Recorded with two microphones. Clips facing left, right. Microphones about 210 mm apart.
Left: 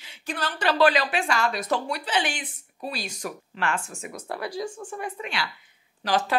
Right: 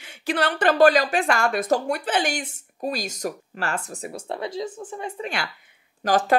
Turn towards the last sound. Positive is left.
turn(degrees=-45)  # may be behind; listen again after turning